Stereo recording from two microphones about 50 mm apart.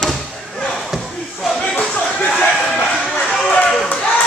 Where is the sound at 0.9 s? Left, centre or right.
Centre.